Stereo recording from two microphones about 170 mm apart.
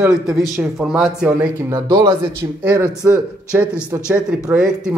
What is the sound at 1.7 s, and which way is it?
Speech, 25° right (ahead or behind).